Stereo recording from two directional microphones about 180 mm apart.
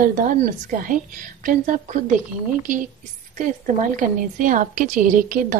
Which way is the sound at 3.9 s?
45° right (ahead or behind).